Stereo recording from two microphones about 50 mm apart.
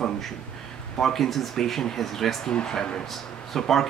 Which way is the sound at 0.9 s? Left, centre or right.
Centre.